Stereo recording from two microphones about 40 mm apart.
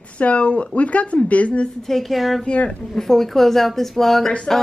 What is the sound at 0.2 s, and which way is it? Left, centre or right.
Speech, left.